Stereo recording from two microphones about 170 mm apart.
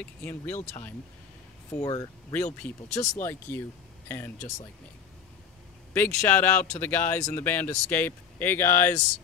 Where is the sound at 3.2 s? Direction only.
15° left (ahead or behind).